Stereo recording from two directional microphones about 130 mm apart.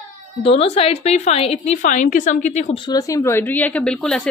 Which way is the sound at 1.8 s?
75° left (ahead or behind).